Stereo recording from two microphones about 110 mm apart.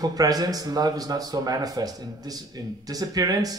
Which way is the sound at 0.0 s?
35° right (ahead or behind).